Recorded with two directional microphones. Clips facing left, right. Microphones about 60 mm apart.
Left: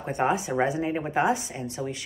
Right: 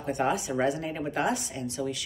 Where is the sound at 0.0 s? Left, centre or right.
Left.